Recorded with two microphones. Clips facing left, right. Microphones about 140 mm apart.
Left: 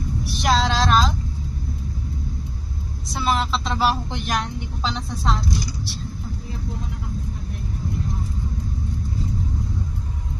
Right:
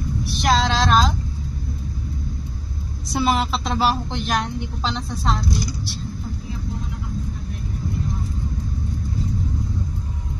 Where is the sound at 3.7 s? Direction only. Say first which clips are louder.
Right 1 dB; centre (ahead or behind).